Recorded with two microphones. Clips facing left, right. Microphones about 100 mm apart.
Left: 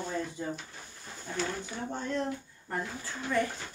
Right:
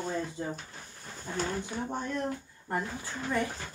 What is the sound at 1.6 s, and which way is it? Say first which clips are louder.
Speech: right 2 dB; 15° right (ahead or behind).